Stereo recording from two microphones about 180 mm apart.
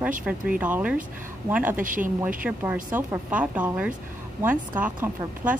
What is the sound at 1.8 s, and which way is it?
Speech, 45° right (ahead or behind).